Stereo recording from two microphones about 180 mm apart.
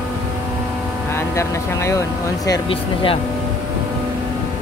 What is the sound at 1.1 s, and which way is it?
Speech, 15° left (ahead or behind).